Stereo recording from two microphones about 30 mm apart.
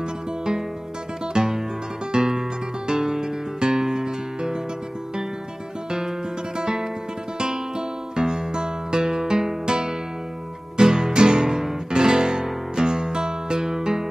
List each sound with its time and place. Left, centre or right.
1.2 s music: right
5.9 s music: right